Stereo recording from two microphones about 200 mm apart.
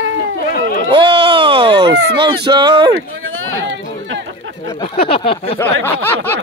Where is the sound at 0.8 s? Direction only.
25° right (ahead or behind).